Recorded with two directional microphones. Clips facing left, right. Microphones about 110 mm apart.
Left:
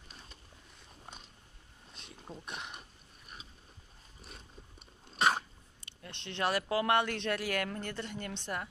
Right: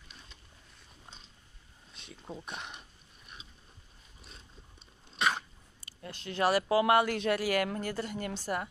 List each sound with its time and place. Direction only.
2.0 s speech: centre (ahead or behind)
5.1 s a sound: 40° left (ahead or behind)
5.8 s speech: 5° right (ahead or behind)